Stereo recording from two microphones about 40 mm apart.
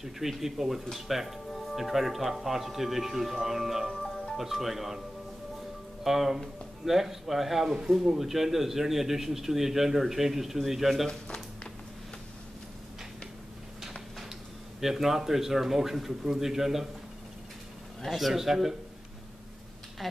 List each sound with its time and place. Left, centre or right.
0.0 s a man's voice: centre
3.9 s music: centre
4.4 s speech: centre
6.0 s a man's voice: centre
11.1 s a sound: left
14.8 s a man's voice: centre
18.0 s a man's voice: centre
20.0 s speech: centre